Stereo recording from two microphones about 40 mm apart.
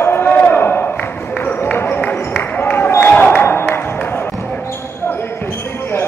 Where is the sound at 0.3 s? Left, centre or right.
Left.